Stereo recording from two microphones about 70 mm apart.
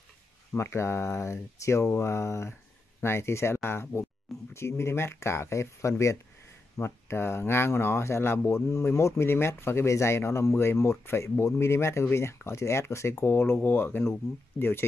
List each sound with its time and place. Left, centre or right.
0.5 s speech: left